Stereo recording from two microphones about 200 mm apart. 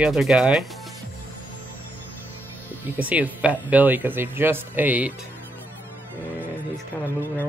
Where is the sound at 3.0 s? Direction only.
5° right (ahead or behind).